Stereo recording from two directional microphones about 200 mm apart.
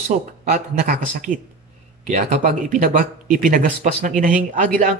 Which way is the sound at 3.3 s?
40° right (ahead or behind).